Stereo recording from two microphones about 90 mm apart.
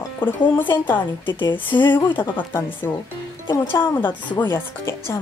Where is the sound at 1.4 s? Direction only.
65° left (ahead or behind).